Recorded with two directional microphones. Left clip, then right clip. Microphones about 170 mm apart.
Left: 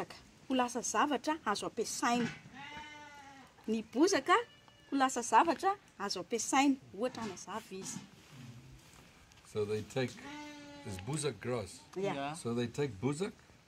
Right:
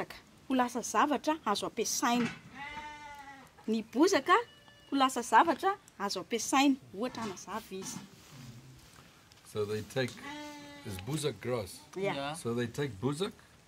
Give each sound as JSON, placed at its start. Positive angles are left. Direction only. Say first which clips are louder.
{"t": 0.0, "sound": "speech", "louder": "right 3 dB", "side_deg": -15}
{"t": 3.6, "sound": "a woman's voice", "louder": "right 3 dB", "side_deg": -20}
{"t": 9.5, "sound": "speech", "louder": "right 1 dB", "side_deg": 0}
{"t": 11.1, "sound": "speech", "louder": "right 3 dB", "side_deg": -5}